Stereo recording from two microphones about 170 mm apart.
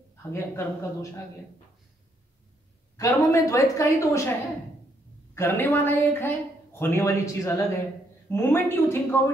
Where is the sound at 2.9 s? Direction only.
20° left (ahead or behind).